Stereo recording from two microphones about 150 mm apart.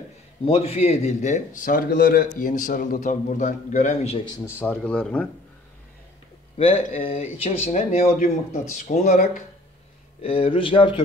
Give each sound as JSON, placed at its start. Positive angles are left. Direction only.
{"t": 0.5, "sound": "a man's voice", "side_deg": 45}
{"t": 2.3, "sound": "a man's voice", "side_deg": 60}
{"t": 4.6, "sound": "speech", "side_deg": 10}
{"t": 6.6, "sound": "speech", "side_deg": 40}
{"t": 8.7, "sound": "speech", "side_deg": 55}
{"t": 10.2, "sound": "speech", "side_deg": 40}